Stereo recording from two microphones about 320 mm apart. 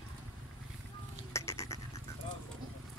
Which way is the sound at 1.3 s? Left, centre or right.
Centre.